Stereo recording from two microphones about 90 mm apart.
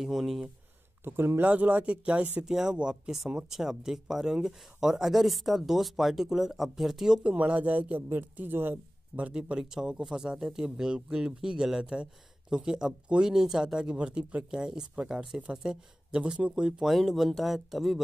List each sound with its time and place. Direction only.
0.0 s speech: 5° right (ahead or behind)
1.0 s speech: 25° right (ahead or behind); by 7.3 s 5° right (ahead or behind)
7.3 s speech: 15° right (ahead or behind)